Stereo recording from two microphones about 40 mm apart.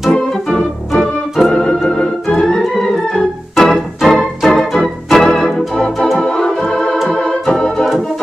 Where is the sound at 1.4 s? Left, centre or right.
Centre.